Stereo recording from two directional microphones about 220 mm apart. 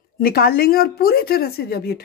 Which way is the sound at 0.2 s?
40° left (ahead or behind).